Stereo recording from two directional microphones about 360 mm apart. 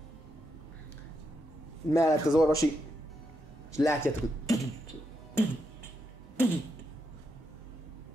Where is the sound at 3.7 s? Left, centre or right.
Centre.